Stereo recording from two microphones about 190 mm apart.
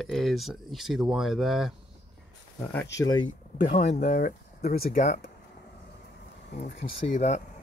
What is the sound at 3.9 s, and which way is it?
Speech, 40° left (ahead or behind).